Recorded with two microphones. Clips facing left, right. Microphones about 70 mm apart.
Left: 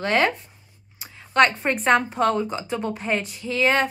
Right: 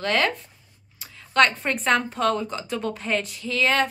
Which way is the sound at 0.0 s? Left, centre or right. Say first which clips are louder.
Left 2 dB; centre.